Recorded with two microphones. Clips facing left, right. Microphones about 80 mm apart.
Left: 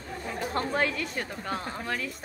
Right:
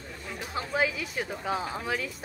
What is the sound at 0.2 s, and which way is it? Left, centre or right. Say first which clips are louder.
Chatter: left 6 dB; left.